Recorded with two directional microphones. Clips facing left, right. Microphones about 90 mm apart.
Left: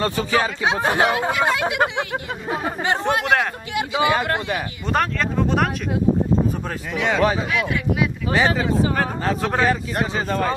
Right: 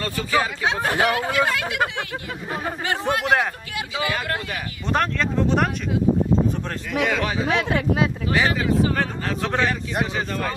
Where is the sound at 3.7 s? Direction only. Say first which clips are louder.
Left 9 dB; 25° left (ahead or behind).